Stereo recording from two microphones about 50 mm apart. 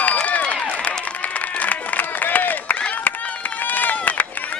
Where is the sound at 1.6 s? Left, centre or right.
Left.